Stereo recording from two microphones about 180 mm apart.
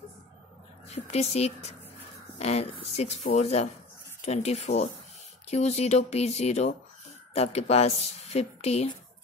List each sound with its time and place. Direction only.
0.8 s a woman's voice: 35° left (ahead or behind)